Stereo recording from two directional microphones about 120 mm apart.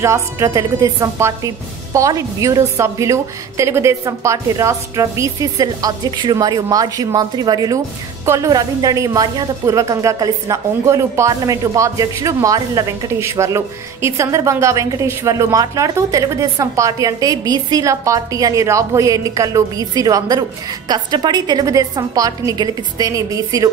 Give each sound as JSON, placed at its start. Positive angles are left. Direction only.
{"t": 0.0, "sound": "a woman's voice", "side_deg": -25}